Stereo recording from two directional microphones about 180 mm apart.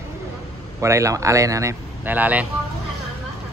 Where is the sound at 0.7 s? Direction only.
15° right (ahead or behind).